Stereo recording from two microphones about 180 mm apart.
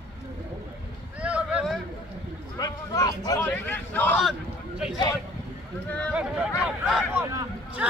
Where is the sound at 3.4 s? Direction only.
10° left (ahead or behind).